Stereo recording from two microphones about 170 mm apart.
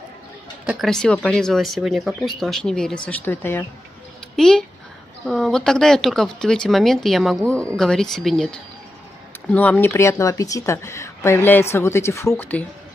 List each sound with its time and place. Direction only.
0.7 s speech: centre (ahead or behind)